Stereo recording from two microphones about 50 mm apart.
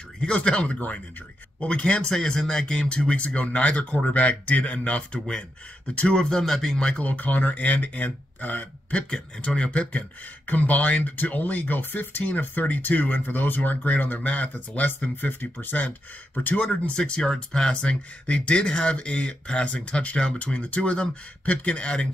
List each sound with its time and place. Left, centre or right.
0.2 s speech: centre
7.0 s speech: left
8.9 s speech: centre
16.9 s speech: centre